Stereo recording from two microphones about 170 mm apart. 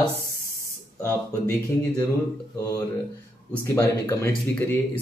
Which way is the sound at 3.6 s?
15° left (ahead or behind).